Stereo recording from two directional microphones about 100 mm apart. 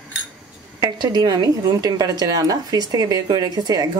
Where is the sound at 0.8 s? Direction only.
45° right (ahead or behind).